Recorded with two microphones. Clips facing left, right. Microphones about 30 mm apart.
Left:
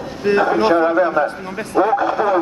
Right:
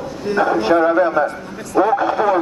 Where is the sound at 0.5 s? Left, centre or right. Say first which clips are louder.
Even; left.